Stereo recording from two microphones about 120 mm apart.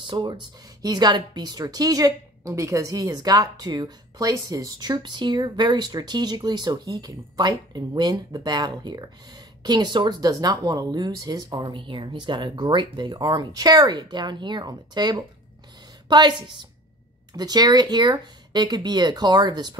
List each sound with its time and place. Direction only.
0.0 s a woman's voice: 45° right (ahead or behind)
11.5 s a woman's voice: 40° right (ahead or behind)